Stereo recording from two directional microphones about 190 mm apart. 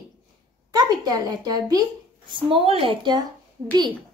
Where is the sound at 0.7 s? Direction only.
20° right (ahead or behind).